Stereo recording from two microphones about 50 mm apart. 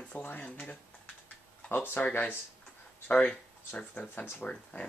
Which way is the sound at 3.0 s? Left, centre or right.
Left.